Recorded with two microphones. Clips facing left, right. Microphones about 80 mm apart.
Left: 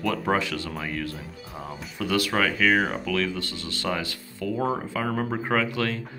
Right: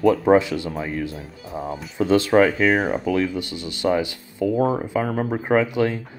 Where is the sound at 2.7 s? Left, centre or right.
Centre.